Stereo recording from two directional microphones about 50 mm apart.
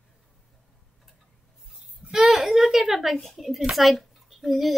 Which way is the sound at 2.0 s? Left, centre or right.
Centre.